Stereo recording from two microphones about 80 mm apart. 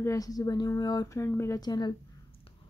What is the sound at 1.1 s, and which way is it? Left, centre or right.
Speech, left.